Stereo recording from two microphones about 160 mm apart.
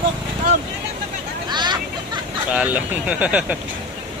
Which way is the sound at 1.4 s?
25° right (ahead or behind).